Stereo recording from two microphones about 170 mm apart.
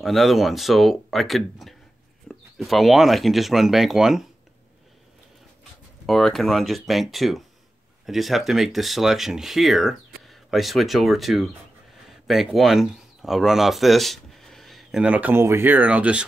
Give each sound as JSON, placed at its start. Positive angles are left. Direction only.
{"t": 0.0, "sound": "speech", "side_deg": 0}
{"t": 5.6, "sound": "speech", "side_deg": 0}